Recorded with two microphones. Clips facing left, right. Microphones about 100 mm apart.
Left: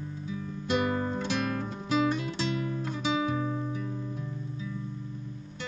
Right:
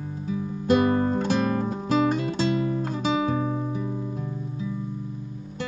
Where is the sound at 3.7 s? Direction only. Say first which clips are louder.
Right 5 dB; 20° right (ahead or behind).